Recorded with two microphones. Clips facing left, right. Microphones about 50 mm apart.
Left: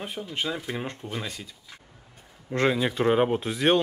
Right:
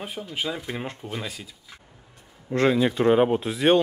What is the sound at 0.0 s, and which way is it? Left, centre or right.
Speech, centre.